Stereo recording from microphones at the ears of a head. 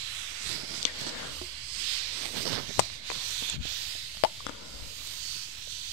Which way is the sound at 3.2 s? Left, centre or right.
Right.